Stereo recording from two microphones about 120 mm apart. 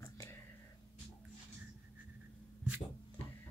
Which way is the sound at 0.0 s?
20° left (ahead or behind).